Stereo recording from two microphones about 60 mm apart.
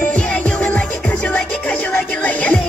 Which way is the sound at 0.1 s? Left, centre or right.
Centre.